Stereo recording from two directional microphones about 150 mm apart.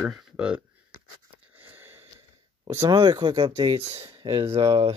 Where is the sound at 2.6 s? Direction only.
25° right (ahead or behind).